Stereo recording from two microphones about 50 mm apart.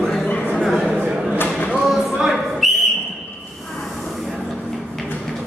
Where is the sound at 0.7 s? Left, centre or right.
Centre.